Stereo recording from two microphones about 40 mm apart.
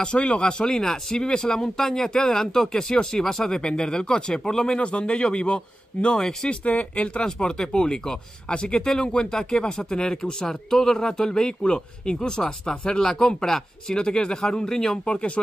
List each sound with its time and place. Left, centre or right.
0.0 s speech: left
4.7 s speech: left
6.6 s speech: left
7.2 s speech: centre